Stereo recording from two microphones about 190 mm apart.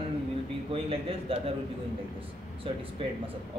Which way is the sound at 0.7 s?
30° right (ahead or behind).